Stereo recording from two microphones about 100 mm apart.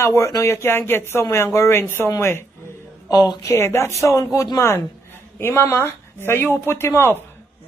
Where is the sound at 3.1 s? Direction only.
40° left (ahead or behind).